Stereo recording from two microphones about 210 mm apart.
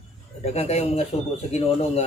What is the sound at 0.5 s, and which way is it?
Speech, 30° left (ahead or behind).